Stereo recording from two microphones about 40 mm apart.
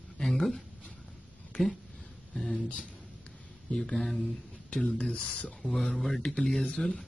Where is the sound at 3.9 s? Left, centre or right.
Centre.